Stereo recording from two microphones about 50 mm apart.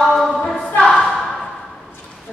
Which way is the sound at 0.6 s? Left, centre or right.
Left.